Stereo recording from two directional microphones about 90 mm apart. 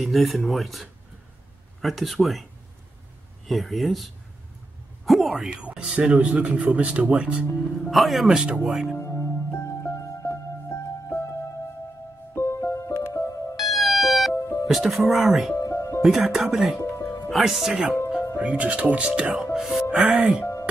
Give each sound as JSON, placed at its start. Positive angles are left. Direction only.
{"t": 0.0, "sound": "speech", "side_deg": 0}
{"t": 3.4, "sound": "speech", "side_deg": 0}
{"t": 7.9, "sound": "speech", "side_deg": 0}
{"t": 8.9, "sound": "music", "side_deg": 30}
{"t": 12.4, "sound": "music", "side_deg": 30}
{"t": 13.6, "sound": "music", "side_deg": 0}
{"t": 14.3, "sound": "music", "side_deg": 30}
{"t": 14.7, "sound": "speech", "side_deg": 0}
{"t": 15.5, "sound": "music", "side_deg": 35}
{"t": 16.0, "sound": "speech", "side_deg": 0}